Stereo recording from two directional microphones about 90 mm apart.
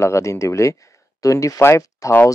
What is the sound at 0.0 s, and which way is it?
Speech, 35° left (ahead or behind).